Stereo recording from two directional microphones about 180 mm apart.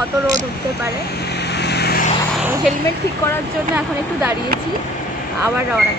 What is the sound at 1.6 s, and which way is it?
Vehicle, 65° left (ahead or behind).